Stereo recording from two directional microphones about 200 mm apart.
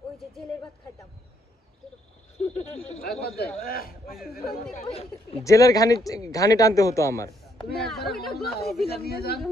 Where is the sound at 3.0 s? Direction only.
50° left (ahead or behind).